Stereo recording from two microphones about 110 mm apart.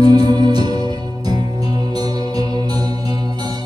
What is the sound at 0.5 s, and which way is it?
Music, 55° left (ahead or behind).